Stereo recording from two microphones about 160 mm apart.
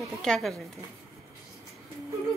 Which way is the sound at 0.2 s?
Centre (ahead or behind).